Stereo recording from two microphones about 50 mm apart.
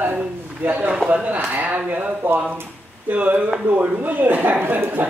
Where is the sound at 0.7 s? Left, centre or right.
Right.